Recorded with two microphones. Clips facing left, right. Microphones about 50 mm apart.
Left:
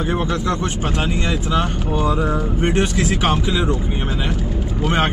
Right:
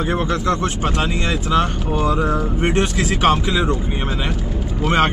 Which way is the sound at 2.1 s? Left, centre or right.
Centre.